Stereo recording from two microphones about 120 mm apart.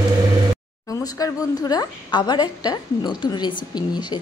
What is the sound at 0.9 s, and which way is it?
A woman's voice, 30° left (ahead or behind).